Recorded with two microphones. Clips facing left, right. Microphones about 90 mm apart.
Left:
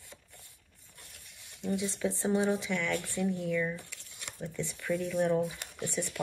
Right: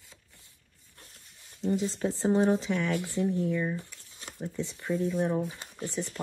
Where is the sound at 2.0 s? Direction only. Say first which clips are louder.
Left 1 dB; 40° right (ahead or behind).